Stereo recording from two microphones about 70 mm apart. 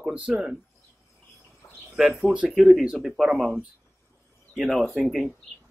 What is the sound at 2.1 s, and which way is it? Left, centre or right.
Speech, centre.